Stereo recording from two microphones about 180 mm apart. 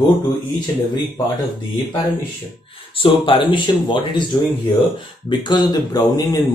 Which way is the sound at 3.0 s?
30° left (ahead or behind).